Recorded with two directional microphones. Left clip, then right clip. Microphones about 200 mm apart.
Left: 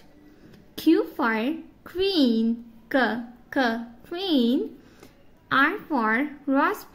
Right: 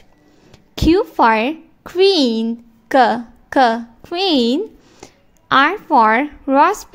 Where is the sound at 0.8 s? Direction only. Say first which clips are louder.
Right 9 dB; 35° right (ahead or behind).